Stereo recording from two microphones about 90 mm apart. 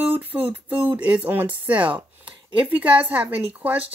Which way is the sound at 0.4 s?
15° right (ahead or behind).